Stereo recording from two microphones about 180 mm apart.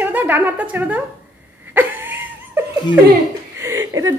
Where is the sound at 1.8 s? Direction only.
10° right (ahead or behind).